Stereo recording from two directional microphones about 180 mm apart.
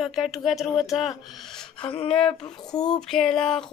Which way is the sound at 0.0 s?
Centre (ahead or behind).